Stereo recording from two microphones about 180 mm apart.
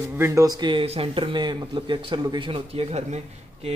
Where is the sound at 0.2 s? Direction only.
15° right (ahead or behind).